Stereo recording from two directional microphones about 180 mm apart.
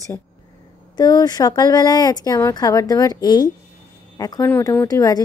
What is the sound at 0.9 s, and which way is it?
A woman's voice, 20° left (ahead or behind).